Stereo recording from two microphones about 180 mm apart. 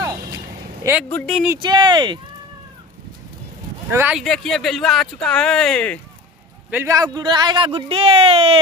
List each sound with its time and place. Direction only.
0.0 s a sound: 20° right (ahead or behind)
1.1 s speech: 5° left (ahead or behind)
1.6 s speech: 25° right (ahead or behind)
3.9 s speech: 10° right (ahead or behind)
4.2 s speech: centre (ahead or behind)
6.7 s speech: 15° right (ahead or behind); by 8.5 s 35° right (ahead or behind)